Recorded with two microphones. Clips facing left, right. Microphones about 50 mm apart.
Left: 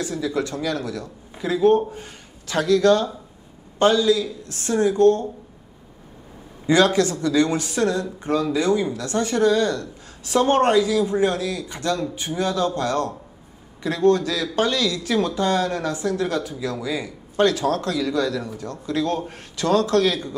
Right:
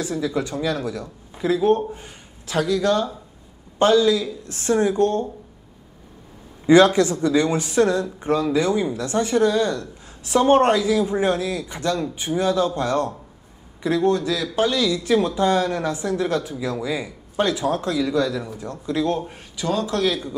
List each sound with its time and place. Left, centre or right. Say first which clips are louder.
0.0 s speech: even; centre
6.6 s speech: right 3 dB; right